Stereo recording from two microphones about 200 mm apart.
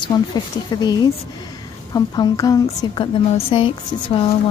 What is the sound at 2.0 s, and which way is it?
A woman's voice, 20° left (ahead or behind).